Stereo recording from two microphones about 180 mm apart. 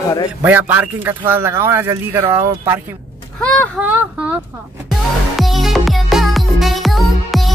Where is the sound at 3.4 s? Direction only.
5° left (ahead or behind).